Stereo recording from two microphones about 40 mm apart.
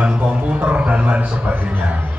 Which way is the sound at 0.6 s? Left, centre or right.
Right.